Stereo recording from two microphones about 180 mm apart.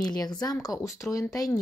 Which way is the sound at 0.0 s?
20° left (ahead or behind).